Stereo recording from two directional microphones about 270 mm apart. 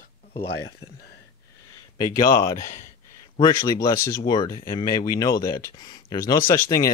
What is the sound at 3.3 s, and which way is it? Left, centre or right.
Speech, centre.